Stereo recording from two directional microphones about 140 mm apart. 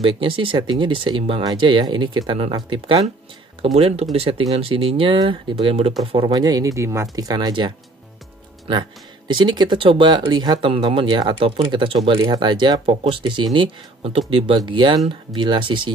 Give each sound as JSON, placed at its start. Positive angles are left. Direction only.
{"t": 0.0, "sound": "speech", "side_deg": -40}